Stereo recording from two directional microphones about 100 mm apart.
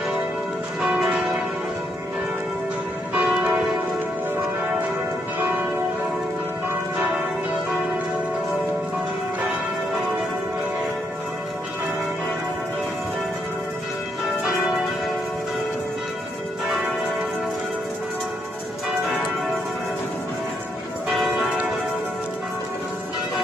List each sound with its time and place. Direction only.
0.7 s church bell: 5° right (ahead or behind)
3.2 s church bell: 15° right (ahead or behind)
21.1 s church bell: 5° right (ahead or behind)